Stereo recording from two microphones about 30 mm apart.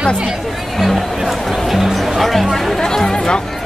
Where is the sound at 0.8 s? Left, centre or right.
Centre.